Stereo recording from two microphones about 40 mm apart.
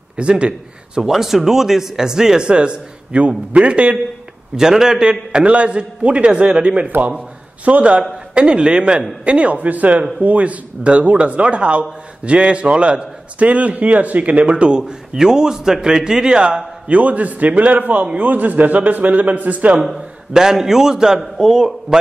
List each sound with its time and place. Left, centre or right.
0.2 s a man's voice: right
1.0 s a man's voice: centre; by 4.0 s right
4.6 s a man's voice: centre
5.3 s a man's voice: right
8.4 s a man's voice: right
9.6 s a man's voice: right
19.8 s a man's voice: centre